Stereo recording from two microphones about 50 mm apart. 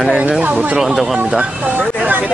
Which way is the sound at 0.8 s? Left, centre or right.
Centre.